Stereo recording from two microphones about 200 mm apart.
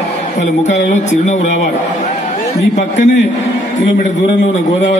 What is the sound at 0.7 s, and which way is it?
Speech, 35° left (ahead or behind).